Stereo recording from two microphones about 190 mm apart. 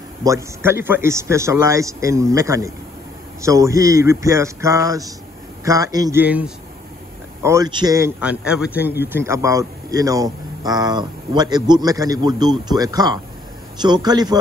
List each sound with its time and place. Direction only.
0.2 s a man's voice: 15° right (ahead or behind)
6.2 s a man's voice: 10° right (ahead or behind)
7.4 s a man's voice: 20° right (ahead or behind)
8.2 s a man's voice: 5° right (ahead or behind); by 14.4 s 20° right (ahead or behind)